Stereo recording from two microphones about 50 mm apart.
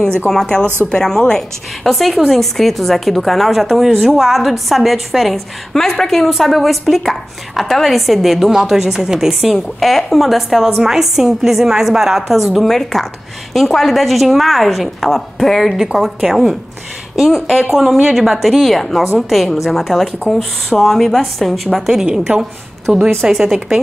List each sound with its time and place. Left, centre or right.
0.3 s a woman's voice: centre
1.9 s a woman's voice: centre
15.8 s a woman's voice: centre
21.8 s a woman's voice: centre